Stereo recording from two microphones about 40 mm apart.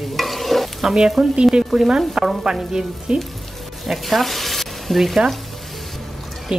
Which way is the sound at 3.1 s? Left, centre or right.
Right.